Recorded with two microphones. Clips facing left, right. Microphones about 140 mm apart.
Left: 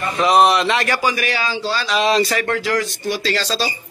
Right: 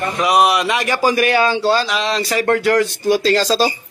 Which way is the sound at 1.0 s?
45° right (ahead or behind).